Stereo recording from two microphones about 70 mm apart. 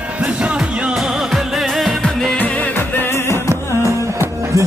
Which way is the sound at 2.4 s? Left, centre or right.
Left.